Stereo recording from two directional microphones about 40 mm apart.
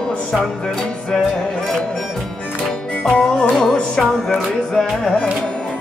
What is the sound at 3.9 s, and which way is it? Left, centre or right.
Music, centre.